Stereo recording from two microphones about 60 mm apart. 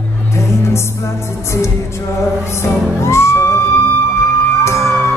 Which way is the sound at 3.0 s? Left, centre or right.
Left.